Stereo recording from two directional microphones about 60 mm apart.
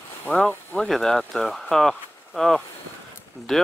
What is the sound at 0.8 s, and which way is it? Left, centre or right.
Speech, centre.